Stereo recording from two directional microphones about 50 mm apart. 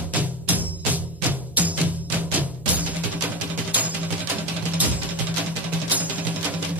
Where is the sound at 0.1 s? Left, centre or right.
Right.